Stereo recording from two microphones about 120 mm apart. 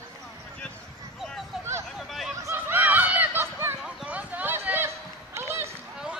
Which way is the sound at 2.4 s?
20° right (ahead or behind).